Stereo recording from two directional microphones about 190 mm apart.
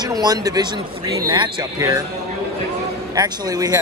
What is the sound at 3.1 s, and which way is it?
Speech, 20° right (ahead or behind).